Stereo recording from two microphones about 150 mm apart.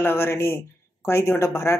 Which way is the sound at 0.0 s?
15° left (ahead or behind).